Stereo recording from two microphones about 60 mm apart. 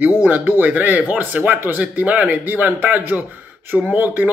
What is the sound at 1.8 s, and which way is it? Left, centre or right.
Speech, right.